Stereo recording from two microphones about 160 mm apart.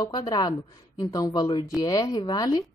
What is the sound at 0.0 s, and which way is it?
A woman's voice, 25° left (ahead or behind).